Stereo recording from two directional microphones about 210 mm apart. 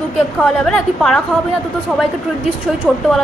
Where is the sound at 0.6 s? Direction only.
Centre (ahead or behind).